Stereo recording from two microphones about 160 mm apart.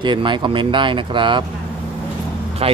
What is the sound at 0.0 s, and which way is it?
Speech, 30° right (ahead or behind).